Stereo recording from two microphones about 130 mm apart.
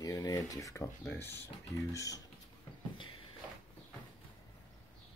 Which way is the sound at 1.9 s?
25° left (ahead or behind).